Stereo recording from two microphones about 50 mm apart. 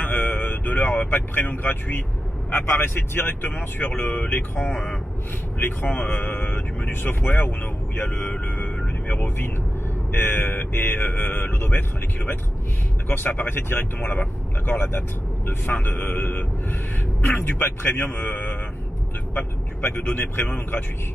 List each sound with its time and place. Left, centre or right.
0.0 s vehicle: left
2.5 s speech: left
5.8 s speech: left
8.3 s speech: left
13.1 s speech: left